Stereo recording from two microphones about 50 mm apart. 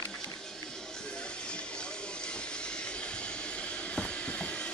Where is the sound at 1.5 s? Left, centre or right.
Centre.